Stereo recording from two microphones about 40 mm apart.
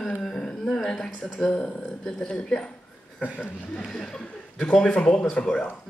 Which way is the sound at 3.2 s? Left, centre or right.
Left.